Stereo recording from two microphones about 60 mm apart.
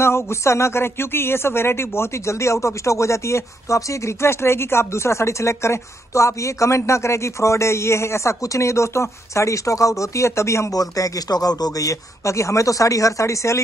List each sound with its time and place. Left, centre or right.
0.0 s speech: left
10.7 s speech: left